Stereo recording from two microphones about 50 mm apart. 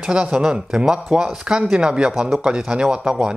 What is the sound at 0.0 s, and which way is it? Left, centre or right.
Speech, centre.